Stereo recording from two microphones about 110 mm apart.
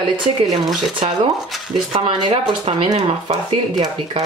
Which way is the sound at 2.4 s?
55° right (ahead or behind).